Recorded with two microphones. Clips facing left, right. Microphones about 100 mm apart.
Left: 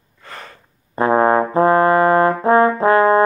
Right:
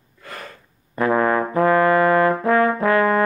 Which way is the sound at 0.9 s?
30° left (ahead or behind).